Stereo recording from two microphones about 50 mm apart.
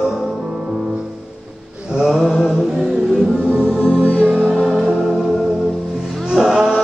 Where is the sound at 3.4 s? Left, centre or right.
Right.